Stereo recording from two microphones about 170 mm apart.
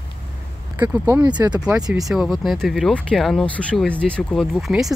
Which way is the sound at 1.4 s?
15° right (ahead or behind).